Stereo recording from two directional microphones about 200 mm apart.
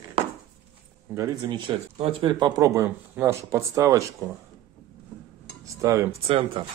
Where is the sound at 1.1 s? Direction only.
15° right (ahead or behind).